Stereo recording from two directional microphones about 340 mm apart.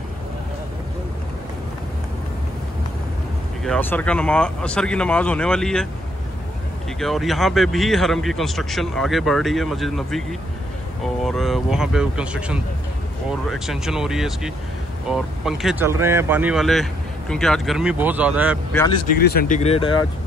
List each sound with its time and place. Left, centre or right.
3.6 s speech: centre
7.0 s speech: centre
11.2 s speech: centre
19.2 s speech: left